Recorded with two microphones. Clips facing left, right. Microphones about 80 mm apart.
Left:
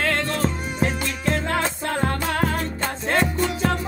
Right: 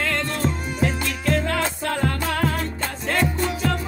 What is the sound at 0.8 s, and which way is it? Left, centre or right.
Music, left.